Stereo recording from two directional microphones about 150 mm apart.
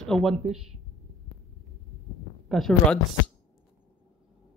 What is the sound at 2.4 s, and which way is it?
Speech, 5° left (ahead or behind).